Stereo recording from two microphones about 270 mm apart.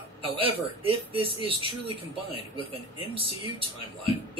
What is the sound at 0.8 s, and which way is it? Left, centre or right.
Speech, centre.